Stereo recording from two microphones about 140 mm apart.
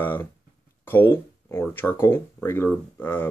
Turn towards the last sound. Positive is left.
turn(degrees=15)  # may be behind; listen again after turning